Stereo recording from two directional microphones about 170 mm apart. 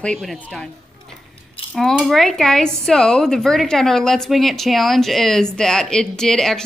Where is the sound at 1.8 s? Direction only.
Centre (ahead or behind).